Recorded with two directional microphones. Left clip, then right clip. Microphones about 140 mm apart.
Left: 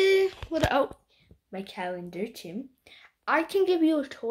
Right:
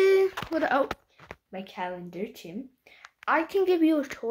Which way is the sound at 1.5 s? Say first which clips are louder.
Left 1 dB; 25° left (ahead or behind).